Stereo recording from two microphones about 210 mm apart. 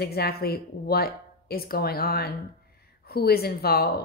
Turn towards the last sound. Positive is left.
turn(degrees=45)  # may be behind; listen again after turning